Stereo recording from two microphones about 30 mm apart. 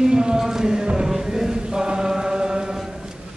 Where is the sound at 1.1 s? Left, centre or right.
Centre.